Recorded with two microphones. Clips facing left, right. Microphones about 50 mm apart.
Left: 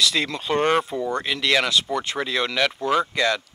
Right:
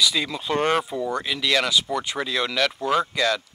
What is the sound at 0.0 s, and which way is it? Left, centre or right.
Speech, centre.